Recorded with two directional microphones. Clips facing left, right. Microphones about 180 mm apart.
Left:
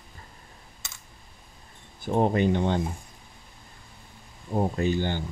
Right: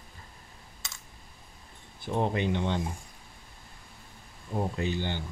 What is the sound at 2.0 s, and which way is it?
Speech, 45° left (ahead or behind).